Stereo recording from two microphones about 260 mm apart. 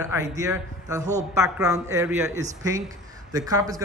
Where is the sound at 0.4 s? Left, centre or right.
Centre.